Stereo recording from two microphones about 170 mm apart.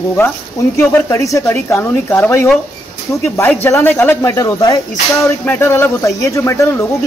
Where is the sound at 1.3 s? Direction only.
15° left (ahead or behind).